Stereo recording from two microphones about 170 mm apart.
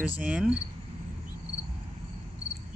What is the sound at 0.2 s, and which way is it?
Speech, 5° right (ahead or behind).